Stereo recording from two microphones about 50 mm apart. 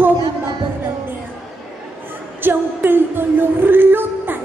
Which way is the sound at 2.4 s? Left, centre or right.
Right.